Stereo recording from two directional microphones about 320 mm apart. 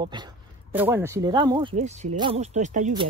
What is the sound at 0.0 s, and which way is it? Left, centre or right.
Speech, centre.